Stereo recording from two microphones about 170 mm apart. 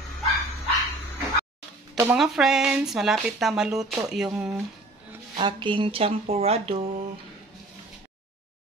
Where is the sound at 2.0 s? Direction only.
5° right (ahead or behind).